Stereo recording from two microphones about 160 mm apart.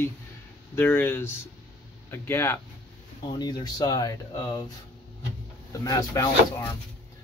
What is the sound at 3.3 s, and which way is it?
Speech, 25° left (ahead or behind).